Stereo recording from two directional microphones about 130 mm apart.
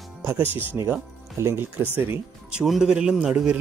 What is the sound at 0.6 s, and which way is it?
A man's voice, 15° right (ahead or behind).